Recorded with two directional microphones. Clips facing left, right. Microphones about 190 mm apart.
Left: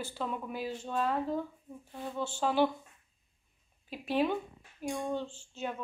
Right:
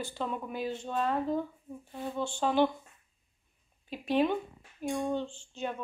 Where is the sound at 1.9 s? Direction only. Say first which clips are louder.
Right 3 dB; 5° right (ahead or behind).